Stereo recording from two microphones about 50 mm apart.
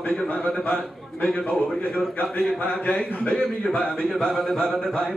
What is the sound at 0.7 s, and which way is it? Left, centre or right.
Speech, centre.